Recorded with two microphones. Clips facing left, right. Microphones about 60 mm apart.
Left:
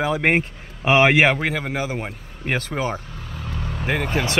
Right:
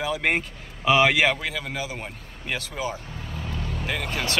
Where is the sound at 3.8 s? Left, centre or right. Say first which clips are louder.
Left 7 dB; left.